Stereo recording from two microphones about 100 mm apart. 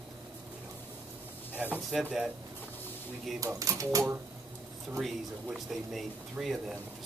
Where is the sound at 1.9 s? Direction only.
5° right (ahead or behind).